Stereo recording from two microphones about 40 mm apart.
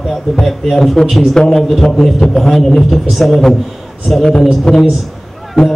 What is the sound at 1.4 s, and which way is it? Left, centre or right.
A man's voice, centre.